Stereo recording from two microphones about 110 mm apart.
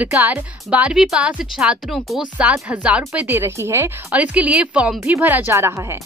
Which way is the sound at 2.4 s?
10° right (ahead or behind).